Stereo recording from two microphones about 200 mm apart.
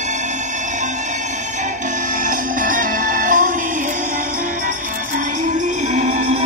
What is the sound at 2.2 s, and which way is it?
Music, 40° right (ahead or behind).